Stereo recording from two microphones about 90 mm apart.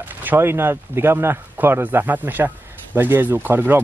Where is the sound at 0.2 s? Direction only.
25° right (ahead or behind).